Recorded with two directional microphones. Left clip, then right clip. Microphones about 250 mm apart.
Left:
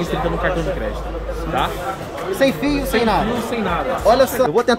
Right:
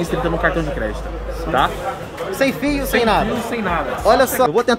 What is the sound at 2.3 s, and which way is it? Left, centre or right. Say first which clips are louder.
Speech: left 1 dB; centre.